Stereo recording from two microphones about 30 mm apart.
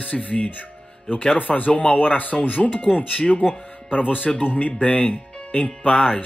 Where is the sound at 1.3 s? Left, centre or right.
Left.